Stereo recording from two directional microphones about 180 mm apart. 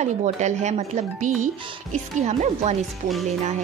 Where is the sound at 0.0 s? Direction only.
40° right (ahead or behind).